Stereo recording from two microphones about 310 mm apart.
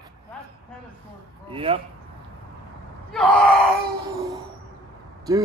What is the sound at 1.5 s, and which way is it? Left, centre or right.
Speech, centre.